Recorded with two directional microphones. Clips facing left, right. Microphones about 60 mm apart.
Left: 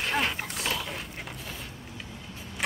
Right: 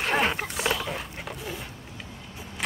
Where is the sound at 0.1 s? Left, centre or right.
Right.